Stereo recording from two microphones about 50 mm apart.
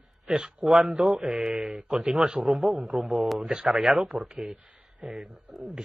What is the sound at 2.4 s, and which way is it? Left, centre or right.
Speech, centre.